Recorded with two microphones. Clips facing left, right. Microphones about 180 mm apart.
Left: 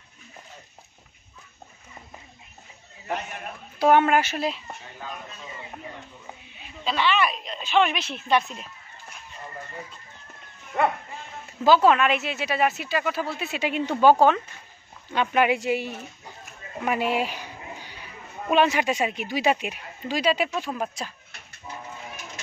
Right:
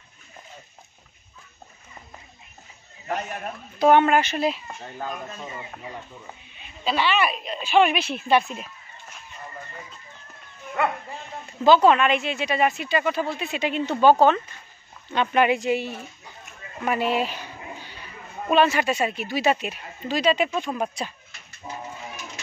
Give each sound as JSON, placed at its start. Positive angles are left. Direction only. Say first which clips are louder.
{"t": 3.8, "sound": "speech", "louder": "right 2 dB", "side_deg": 5}
{"t": 4.8, "sound": "speech", "louder": "right 8 dB", "side_deg": -45}
{"t": 6.8, "sound": "speech", "louder": "right 1 dB", "side_deg": -5}
{"t": 11.6, "sound": "speech", "louder": "right 2 dB", "side_deg": 5}
{"t": 21.6, "sound": "bird", "louder": "right 3 dB", "side_deg": -35}